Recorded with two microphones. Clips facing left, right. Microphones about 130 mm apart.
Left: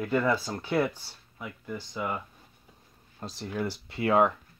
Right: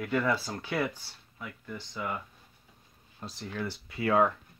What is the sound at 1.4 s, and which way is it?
Speech, 20° left (ahead or behind).